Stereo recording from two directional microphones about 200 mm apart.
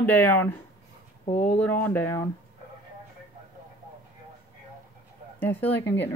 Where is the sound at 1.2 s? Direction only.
35° left (ahead or behind).